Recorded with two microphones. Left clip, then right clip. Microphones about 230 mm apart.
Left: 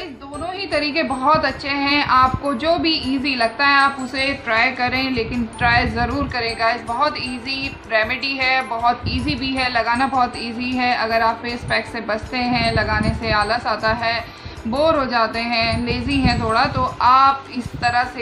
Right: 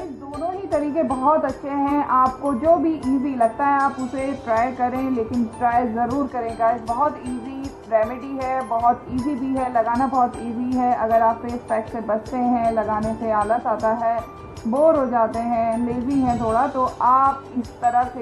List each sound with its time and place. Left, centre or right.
1.0 s a woman's voice: left
1.7 s a woman's voice: left